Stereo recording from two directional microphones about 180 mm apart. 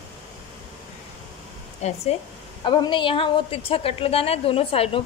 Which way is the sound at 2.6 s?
25° left (ahead or behind).